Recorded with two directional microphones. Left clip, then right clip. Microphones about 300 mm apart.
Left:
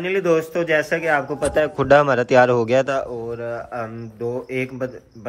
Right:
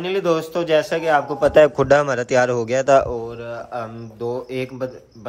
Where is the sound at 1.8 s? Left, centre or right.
Centre.